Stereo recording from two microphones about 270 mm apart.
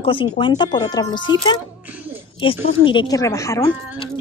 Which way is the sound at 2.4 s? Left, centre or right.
Centre.